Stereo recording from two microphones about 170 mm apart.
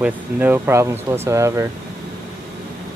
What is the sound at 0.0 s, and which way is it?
Speech, 10° right (ahead or behind).